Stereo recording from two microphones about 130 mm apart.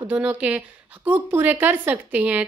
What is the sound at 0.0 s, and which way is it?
A woman's voice, 15° right (ahead or behind).